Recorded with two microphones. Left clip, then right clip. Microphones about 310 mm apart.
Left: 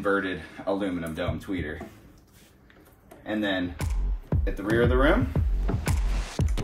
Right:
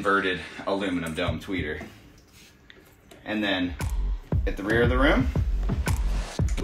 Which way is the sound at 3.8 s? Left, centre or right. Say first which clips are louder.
Right 1 dB; centre.